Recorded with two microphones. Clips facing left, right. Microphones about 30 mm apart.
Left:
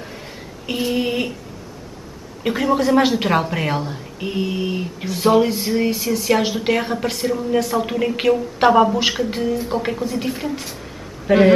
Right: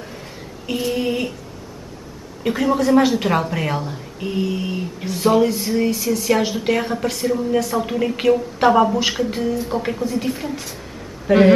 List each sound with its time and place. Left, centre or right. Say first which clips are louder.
0.7 s speech: even; centre
2.4 s speech: even; centre